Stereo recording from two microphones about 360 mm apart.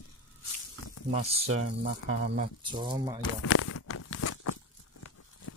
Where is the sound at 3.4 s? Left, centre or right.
Left.